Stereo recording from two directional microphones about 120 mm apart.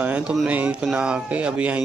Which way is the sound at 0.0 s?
10° right (ahead or behind).